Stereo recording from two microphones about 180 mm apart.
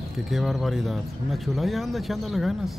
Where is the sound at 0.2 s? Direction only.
Centre (ahead or behind).